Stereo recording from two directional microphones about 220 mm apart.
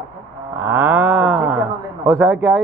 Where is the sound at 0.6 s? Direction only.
10° right (ahead or behind).